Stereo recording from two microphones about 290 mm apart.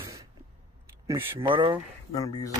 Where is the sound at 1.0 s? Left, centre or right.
Centre.